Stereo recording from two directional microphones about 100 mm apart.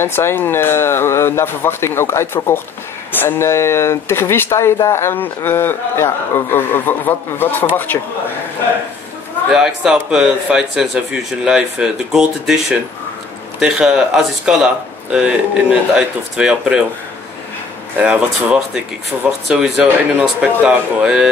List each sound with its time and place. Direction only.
0.0 s a man's voice: 25° left (ahead or behind)
9.5 s speech: 5° right (ahead or behind)
17.9 s speech: 15° right (ahead or behind)